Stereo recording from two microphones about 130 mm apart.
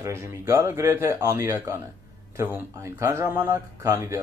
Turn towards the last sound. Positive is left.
turn(degrees=-20)  # may be behind; listen again after turning